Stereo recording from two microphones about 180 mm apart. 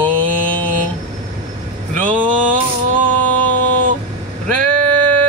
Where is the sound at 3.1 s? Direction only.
10° left (ahead or behind).